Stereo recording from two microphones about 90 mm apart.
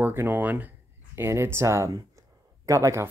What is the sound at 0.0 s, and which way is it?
Speech, 25° right (ahead or behind).